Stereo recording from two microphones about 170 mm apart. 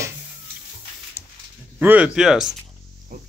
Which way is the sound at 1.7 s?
5° right (ahead or behind).